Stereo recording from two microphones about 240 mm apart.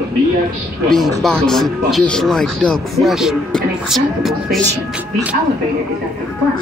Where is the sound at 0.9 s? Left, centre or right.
Centre.